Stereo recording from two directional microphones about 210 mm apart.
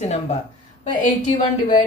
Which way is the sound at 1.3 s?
20° left (ahead or behind).